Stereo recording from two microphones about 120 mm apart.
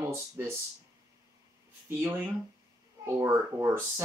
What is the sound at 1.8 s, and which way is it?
Speech, 20° right (ahead or behind).